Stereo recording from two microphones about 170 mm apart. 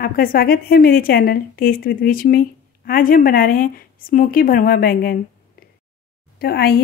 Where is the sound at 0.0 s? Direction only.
60° left (ahead or behind).